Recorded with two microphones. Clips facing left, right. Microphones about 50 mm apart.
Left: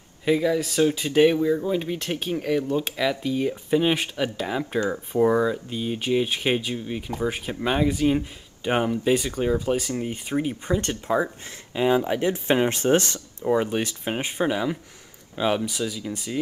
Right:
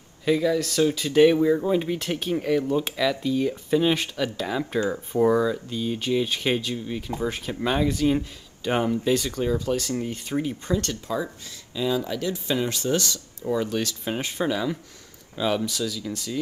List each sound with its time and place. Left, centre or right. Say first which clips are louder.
0.2 s speech: even; centre
1.3 s speech: right 2 dB; centre
2.0 s speech: right 1 dB; centre
3.0 s speech: even; centre